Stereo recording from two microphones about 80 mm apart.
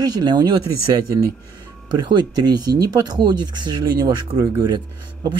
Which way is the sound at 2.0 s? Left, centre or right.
Right.